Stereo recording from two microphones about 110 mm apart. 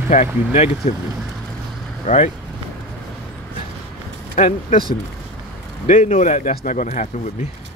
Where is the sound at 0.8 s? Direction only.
70° left (ahead or behind).